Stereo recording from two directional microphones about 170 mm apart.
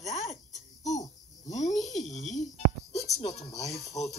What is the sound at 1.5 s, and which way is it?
Speech, 45° left (ahead or behind).